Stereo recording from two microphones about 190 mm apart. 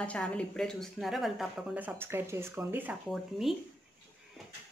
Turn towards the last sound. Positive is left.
turn(degrees=0)  # may be behind; listen again after turning